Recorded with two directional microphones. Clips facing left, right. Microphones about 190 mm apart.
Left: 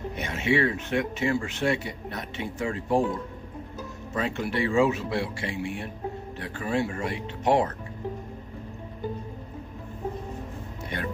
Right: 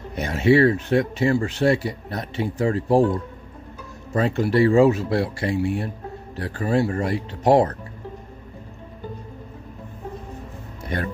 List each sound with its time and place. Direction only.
0.1 s speech: 35° right (ahead or behind)